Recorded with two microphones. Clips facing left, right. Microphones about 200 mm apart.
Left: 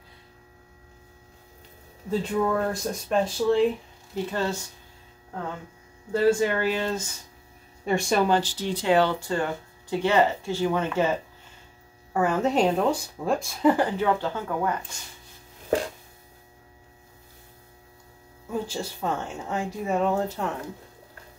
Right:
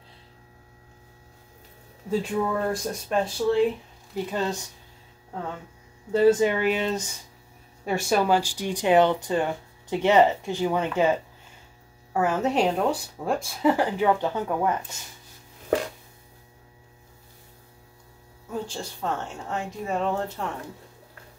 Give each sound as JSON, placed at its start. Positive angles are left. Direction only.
{"t": 2.0, "sound": "speech", "side_deg": -5}
{"t": 4.3, "sound": "speech", "side_deg": -15}
{"t": 6.1, "sound": "speech", "side_deg": -20}
{"t": 7.8, "sound": "speech", "side_deg": -5}
{"t": 12.1, "sound": "speech", "side_deg": -5}
{"t": 18.5, "sound": "a woman's voice", "side_deg": 10}